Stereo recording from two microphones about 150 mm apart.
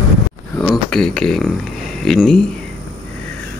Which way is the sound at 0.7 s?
5° left (ahead or behind).